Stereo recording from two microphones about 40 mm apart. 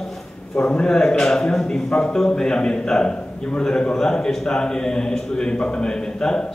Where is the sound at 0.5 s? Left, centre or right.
Left.